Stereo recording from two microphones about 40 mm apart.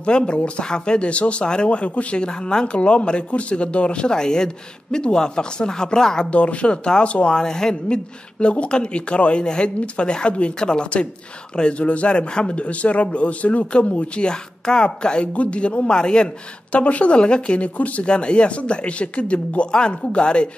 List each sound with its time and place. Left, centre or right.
0.0 s speech: left
6.3 s speech: left
7.3 s speech: centre
16.7 s speech: left
17.7 s speech: left
18.0 s speech: left